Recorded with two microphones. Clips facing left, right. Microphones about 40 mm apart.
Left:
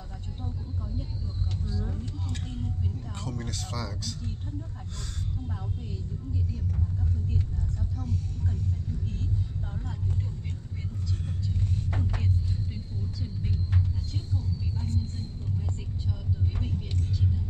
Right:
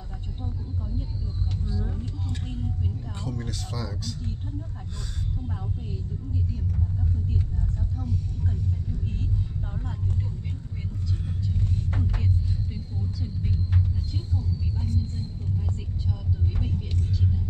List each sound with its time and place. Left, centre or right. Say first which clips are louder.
1.9 s a sound: right 2 dB; centre
3.2 s speech: right 2 dB; centre
11.9 s speech: right 1 dB; centre
14.1 s speech: right 2 dB; centre